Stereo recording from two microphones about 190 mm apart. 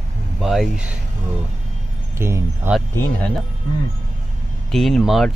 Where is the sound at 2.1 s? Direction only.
15° right (ahead or behind).